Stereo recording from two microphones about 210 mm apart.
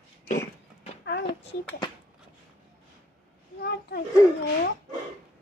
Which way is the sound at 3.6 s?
45° left (ahead or behind).